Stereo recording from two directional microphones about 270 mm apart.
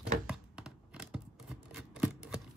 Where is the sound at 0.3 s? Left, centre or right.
Centre.